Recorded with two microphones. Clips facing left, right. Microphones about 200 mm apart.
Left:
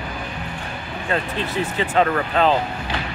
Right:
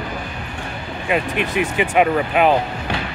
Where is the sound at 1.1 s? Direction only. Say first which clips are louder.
Right 4 dB; 15° right (ahead or behind).